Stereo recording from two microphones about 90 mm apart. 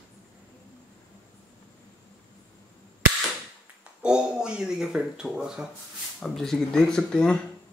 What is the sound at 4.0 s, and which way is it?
Speech, 10° right (ahead or behind).